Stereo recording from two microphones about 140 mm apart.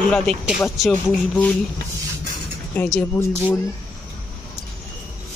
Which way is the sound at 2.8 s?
15° left (ahead or behind).